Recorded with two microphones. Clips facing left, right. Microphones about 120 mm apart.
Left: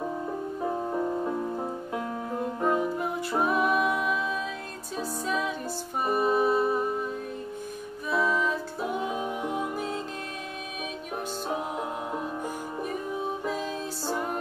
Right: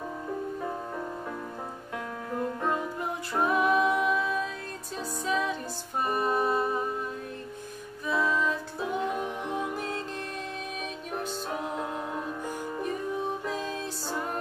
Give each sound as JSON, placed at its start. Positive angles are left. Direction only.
{"t": 0.6, "sound": "music", "side_deg": 20}
{"t": 2.6, "sound": "music", "side_deg": 10}
{"t": 8.1, "sound": "music", "side_deg": 10}
{"t": 12.8, "sound": "music", "side_deg": 5}